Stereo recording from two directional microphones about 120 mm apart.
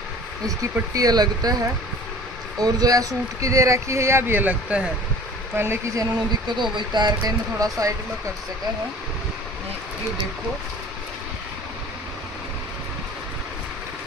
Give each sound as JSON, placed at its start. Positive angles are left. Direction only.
{"t": 0.9, "sound": "speech", "side_deg": -35}
{"t": 5.6, "sound": "speech", "side_deg": -20}
{"t": 6.1, "sound": "speech", "side_deg": -35}